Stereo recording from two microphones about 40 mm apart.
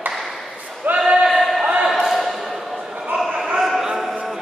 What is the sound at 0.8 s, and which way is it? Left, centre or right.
Choir, right.